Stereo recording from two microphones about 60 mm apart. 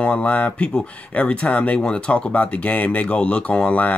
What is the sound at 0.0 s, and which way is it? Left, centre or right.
Speech, left.